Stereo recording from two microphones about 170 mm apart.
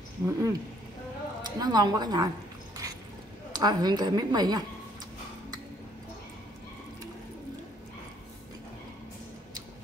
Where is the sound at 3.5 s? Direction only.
25° right (ahead or behind).